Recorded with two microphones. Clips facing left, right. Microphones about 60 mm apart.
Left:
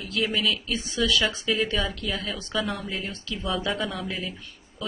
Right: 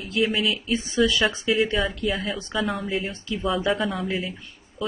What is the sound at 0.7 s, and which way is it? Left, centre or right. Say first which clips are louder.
Speech: right 6 dB; right.